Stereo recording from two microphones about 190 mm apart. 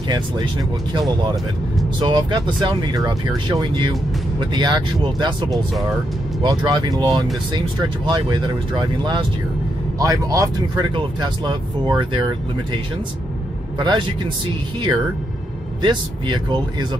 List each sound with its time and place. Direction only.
2.0 s speech: 25° right (ahead or behind)
5.5 s speech: centre (ahead or behind)
6.4 s speech: 25° right (ahead or behind)
13.7 s speech: 25° right (ahead or behind)
15.8 s speech: 25° right (ahead or behind)